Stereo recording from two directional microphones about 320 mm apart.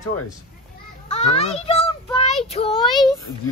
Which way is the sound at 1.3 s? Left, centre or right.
Centre.